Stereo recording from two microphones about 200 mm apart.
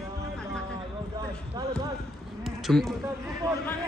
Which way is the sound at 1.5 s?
20° right (ahead or behind).